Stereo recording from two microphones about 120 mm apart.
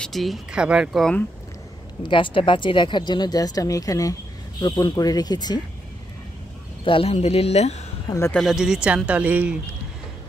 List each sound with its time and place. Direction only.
0.0 s speech: centre (ahead or behind)
2.0 s speech: 45° left (ahead or behind)
6.8 s speech: 50° left (ahead or behind); by 7.8 s 65° left (ahead or behind)
8.3 s speech: centre (ahead or behind)